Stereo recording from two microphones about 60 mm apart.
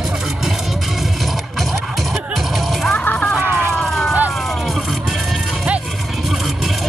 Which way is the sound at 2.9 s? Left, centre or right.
Left.